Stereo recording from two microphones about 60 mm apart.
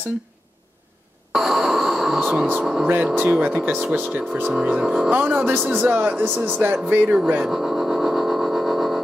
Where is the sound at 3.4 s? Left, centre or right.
Right.